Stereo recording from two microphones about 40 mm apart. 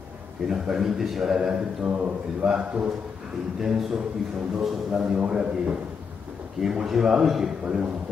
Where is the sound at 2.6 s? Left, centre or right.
Right.